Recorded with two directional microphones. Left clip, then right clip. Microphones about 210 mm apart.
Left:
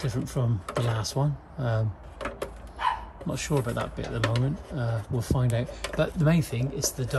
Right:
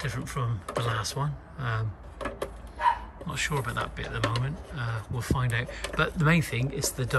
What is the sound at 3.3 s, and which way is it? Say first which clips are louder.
Speech: right 1 dB; 25° left (ahead or behind).